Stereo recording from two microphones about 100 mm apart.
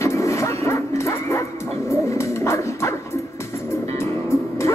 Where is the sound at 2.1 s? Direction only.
30° left (ahead or behind).